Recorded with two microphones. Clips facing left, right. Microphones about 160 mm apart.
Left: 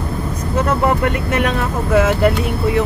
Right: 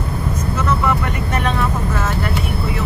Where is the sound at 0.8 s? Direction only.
65° left (ahead or behind).